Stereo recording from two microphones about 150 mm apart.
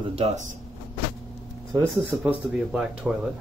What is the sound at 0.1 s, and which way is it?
Speech, 45° right (ahead or behind).